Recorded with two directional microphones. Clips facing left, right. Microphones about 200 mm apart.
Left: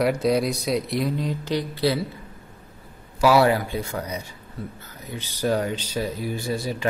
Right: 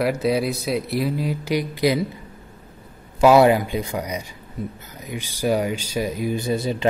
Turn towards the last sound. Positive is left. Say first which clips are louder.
# right 4 dB
turn(degrees=-20)  # may be behind; listen again after turning